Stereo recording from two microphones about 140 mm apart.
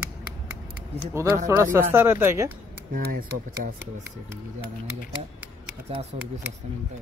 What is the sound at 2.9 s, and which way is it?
Speech, 90° right.